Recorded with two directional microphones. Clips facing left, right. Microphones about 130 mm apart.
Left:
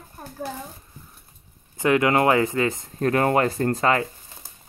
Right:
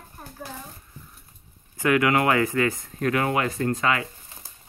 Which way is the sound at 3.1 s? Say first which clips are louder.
Left 4 dB; 40° left (ahead or behind).